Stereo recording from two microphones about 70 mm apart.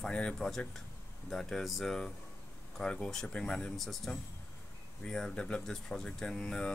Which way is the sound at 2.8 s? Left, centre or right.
Centre.